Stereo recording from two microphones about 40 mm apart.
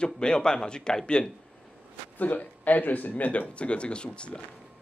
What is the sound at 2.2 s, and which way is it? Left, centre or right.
Speech, left.